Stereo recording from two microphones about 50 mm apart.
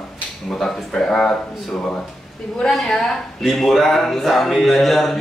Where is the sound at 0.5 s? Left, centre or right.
Centre.